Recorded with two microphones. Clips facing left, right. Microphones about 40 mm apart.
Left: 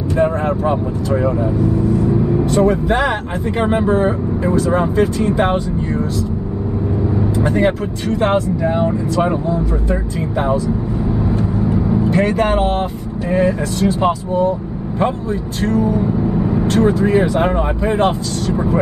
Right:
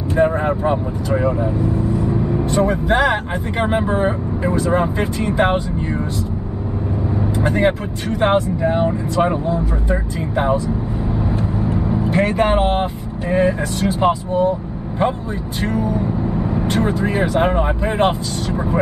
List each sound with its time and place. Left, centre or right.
0.2 s speech: centre
2.0 s vehicle: centre
2.5 s speech: centre
7.3 s speech: centre
11.2 s vehicle: centre
12.1 s speech: centre
15.8 s speech: centre
16.6 s speech: centre